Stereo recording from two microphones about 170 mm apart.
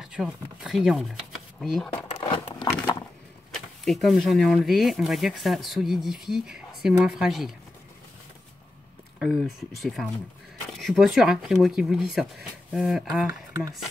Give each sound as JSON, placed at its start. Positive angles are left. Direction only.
{"t": 0.0, "sound": "speech", "side_deg": -5}
{"t": 2.2, "sound": "a sound", "side_deg": 30}
{"t": 3.5, "sound": "speech", "side_deg": 0}
{"t": 9.2, "sound": "speech", "side_deg": 0}